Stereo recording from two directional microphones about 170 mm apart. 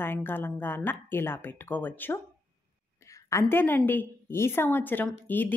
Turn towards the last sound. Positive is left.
turn(degrees=10)  # may be behind; listen again after turning